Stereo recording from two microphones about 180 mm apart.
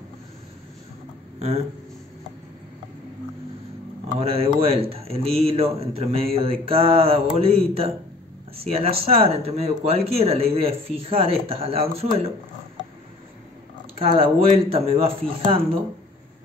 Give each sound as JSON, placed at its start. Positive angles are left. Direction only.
{"t": 4.2, "sound": "speech", "side_deg": -30}
{"t": 13.9, "sound": "speech", "side_deg": -30}